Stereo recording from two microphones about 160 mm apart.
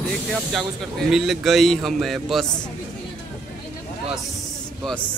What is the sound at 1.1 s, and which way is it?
Speech, centre (ahead or behind).